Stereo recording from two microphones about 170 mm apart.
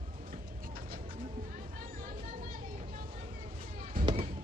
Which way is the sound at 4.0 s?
55° right (ahead or behind).